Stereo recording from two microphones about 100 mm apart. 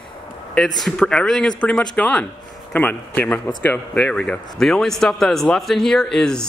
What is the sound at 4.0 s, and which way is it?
Speech, 10° left (ahead or behind).